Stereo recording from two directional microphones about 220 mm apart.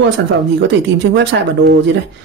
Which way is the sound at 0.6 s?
50° right (ahead or behind).